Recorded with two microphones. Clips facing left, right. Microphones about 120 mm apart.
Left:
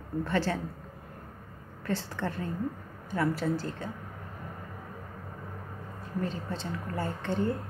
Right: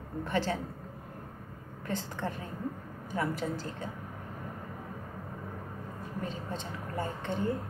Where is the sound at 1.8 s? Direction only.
15° right (ahead or behind).